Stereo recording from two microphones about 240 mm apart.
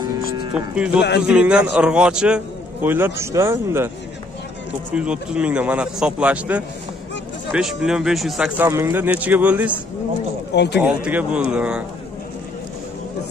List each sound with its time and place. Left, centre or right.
0.5 s a man's voice: centre
4.9 s a man's voice: centre
10.5 s speech: left
10.8 s a man's voice: centre